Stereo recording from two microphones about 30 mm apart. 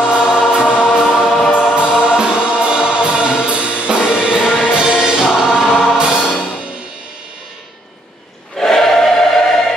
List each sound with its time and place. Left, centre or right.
0.0 s choir: right
1.2 s choir: centre
1.5 s choir: left
1.8 s music: right
5.3 s choir: right
5.9 s music: right
8.5 s choir: centre